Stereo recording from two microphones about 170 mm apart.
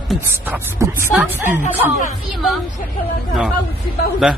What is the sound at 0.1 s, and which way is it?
Speech, centre (ahead or behind).